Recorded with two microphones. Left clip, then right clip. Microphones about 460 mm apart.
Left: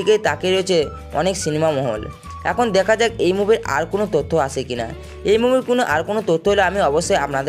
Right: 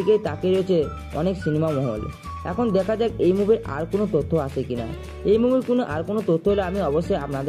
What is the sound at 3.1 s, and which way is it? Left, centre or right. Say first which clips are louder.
Speech: left 2 dB; centre.